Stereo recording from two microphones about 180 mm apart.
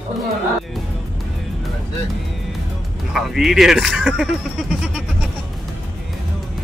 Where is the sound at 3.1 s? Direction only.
Centre (ahead or behind).